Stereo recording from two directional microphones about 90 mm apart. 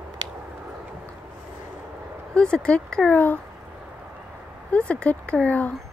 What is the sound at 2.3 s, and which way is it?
Speech, 10° left (ahead or behind).